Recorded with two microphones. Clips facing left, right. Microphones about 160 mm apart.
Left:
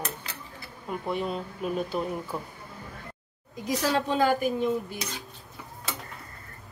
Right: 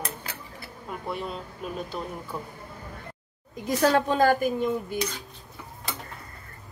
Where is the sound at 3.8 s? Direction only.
55° right (ahead or behind).